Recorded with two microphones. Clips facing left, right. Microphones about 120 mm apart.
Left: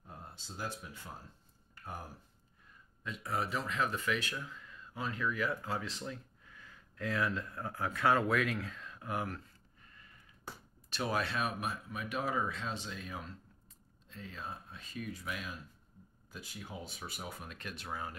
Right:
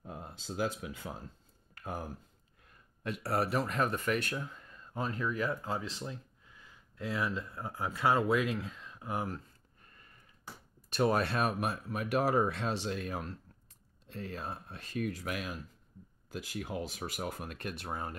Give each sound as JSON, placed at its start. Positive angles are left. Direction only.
{"t": 0.0, "sound": "speech", "side_deg": -90}
{"t": 3.0, "sound": "speech", "side_deg": -65}
{"t": 5.5, "sound": "speech", "side_deg": -25}
{"t": 10.9, "sound": "speech", "side_deg": -45}
{"t": 16.3, "sound": "speech", "side_deg": -90}
{"t": 17.5, "sound": "speech", "side_deg": -55}
{"t": 17.8, "sound": "speech", "side_deg": -40}